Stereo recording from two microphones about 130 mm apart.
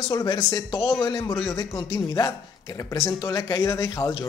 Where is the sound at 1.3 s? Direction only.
Centre (ahead or behind).